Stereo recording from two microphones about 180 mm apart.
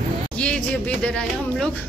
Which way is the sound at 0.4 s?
5° left (ahead or behind).